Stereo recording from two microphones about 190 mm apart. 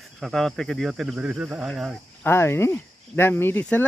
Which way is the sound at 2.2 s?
15° left (ahead or behind).